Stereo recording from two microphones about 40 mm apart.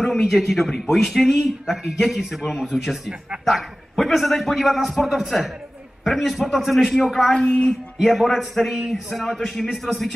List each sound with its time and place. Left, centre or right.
0.0 s a man's voice: centre
3.4 s a man's voice: centre
7.3 s a sound: left
8.0 s a man's voice: centre